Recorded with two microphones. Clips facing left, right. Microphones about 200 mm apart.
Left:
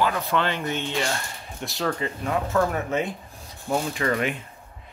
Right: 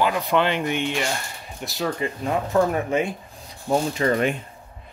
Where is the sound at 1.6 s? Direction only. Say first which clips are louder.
Right 2 dB; centre (ahead or behind).